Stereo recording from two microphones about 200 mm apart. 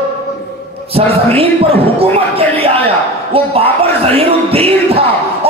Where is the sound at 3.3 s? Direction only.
30° right (ahead or behind).